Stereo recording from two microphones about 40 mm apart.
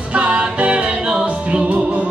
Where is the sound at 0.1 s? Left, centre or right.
Right.